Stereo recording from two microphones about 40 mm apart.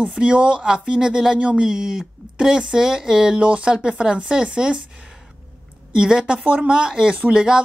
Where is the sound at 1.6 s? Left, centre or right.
Centre.